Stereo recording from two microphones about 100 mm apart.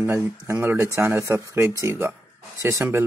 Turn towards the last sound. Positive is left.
turn(degrees=-25)  # may be behind; listen again after turning